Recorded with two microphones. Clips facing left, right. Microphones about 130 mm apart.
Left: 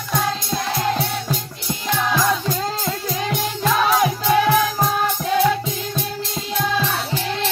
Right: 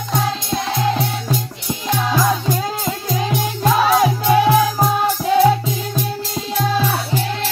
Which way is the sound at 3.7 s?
30° right (ahead or behind).